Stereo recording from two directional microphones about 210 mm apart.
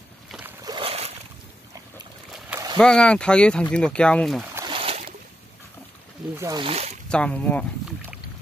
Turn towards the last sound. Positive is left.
turn(degrees=5)  # may be behind; listen again after turning